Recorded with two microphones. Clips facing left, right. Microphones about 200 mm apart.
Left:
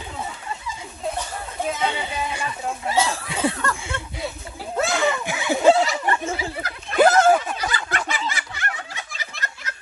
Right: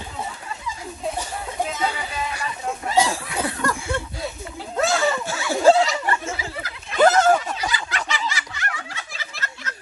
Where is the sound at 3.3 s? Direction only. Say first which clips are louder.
Left 3 dB; 25° left (ahead or behind).